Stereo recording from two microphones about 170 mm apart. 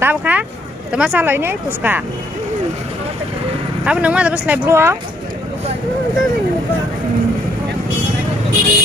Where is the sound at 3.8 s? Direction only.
5° right (ahead or behind).